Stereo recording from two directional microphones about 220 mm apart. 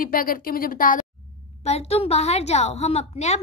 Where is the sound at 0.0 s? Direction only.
40° left (ahead or behind).